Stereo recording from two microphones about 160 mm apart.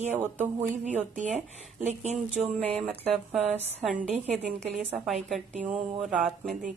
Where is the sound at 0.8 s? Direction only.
45° right (ahead or behind).